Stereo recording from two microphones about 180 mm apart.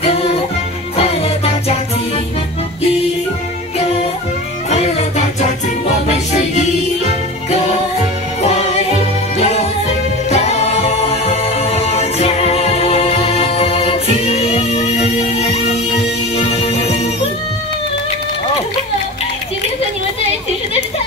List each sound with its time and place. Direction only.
0.0 s music: 35° left (ahead or behind)
4.6 s music: 35° left (ahead or behind)
8.4 s music: 35° left (ahead or behind)
10.3 s a capella: 35° left (ahead or behind)
16.3 s music: 35° left (ahead or behind)